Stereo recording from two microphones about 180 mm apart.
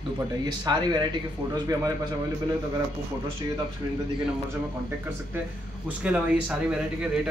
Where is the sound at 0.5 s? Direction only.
25° right (ahead or behind).